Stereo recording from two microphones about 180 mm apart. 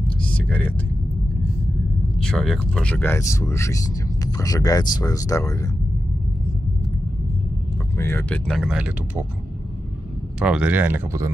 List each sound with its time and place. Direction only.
0.5 s speech: 10° left (ahead or behind)
2.1 s speech: 5° left (ahead or behind)
8.0 s speech: 10° left (ahead or behind)
8.5 s speech: centre (ahead or behind)
10.4 s speech: 5° right (ahead or behind)